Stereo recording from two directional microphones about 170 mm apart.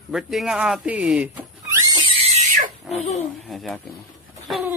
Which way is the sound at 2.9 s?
40° left (ahead or behind).